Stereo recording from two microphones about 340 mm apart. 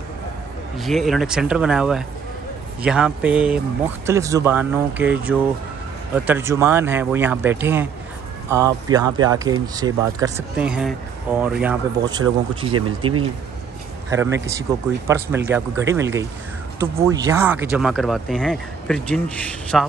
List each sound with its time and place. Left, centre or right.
0.7 s speech: centre
12.7 s speech: right
14.1 s speech: centre